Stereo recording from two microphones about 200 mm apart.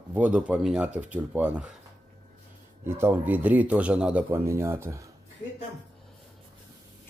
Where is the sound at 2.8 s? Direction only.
10° right (ahead or behind).